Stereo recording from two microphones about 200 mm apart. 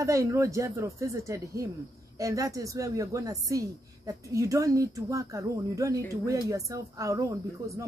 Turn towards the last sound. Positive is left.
turn(degrees=-15)  # may be behind; listen again after turning